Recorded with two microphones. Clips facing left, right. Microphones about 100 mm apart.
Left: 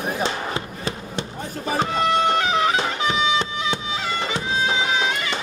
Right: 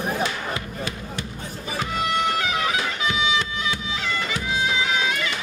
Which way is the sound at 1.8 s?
30° left (ahead or behind).